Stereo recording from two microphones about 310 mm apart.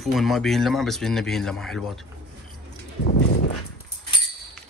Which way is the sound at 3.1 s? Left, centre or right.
Left.